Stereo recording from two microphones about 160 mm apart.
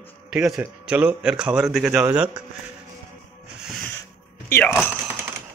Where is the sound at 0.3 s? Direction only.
5° right (ahead or behind).